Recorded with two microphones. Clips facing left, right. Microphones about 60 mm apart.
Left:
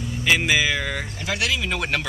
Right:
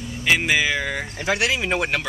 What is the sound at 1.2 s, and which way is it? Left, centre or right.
Speech, right.